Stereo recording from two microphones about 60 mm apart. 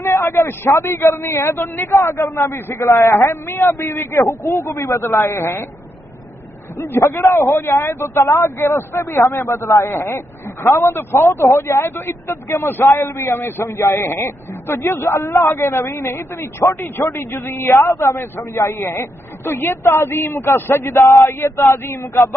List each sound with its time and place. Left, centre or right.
0.0 s a man's voice: left
2.8 s speech: left
3.2 s a man's voice: left
4.2 s a man's voice: left
6.8 s a man's voice: left
10.9 s a man's voice: left
11.1 s a man's voice: left
15.2 s a man's voice: left